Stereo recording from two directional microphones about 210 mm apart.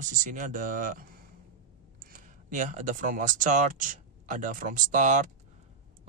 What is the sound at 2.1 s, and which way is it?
Speech, 35° right (ahead or behind).